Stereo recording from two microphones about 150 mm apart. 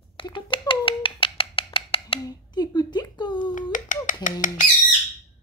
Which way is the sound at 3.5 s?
60° left (ahead or behind).